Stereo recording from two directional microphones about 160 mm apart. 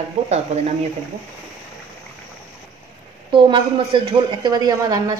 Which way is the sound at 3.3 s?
35° right (ahead or behind).